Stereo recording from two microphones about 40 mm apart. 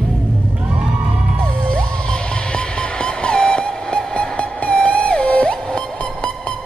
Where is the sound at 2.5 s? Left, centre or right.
Left.